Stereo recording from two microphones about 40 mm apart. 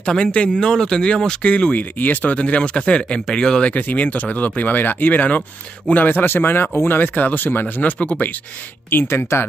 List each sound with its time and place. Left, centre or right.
0.0 s speech: centre
1.4 s speech: left
2.3 s speech: left
3.8 s speech: left
6.2 s speech: left
7.6 s speech: left
8.9 s speech: left